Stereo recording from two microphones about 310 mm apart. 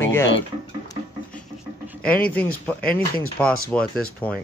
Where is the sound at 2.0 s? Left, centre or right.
Centre.